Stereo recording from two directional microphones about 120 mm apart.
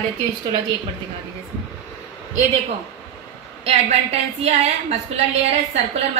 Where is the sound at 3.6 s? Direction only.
60° right (ahead or behind).